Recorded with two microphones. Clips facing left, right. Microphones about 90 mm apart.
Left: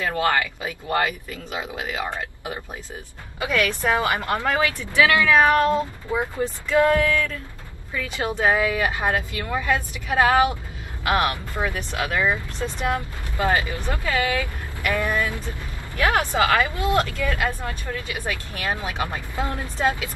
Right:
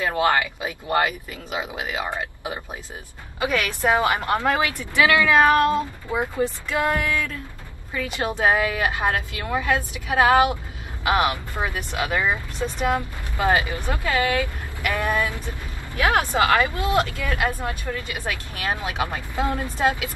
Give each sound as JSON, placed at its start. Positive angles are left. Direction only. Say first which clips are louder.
{"t": 0.0, "sound": "speech", "louder": "right 1 dB", "side_deg": -15}